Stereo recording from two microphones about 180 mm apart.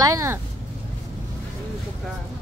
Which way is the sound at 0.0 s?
20° right (ahead or behind).